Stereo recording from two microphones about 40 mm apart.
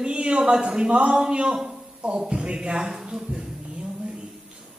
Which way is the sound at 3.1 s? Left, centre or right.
Right.